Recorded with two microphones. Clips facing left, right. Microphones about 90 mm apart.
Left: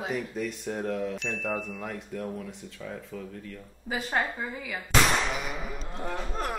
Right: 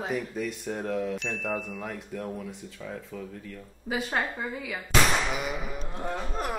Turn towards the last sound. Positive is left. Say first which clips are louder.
# right 1 dB
turn(degrees=-5)  # may be behind; listen again after turning